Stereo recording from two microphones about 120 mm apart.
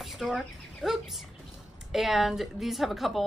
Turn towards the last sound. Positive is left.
turn(degrees=0)  # may be behind; listen again after turning